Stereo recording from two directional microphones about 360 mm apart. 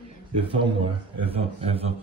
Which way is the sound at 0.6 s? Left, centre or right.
Centre.